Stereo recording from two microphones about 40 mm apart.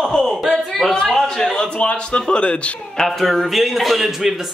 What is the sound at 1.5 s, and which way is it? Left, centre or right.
A man's voice, left.